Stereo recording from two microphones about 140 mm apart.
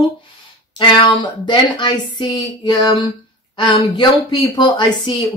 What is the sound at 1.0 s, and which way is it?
Speech, 35° left (ahead or behind).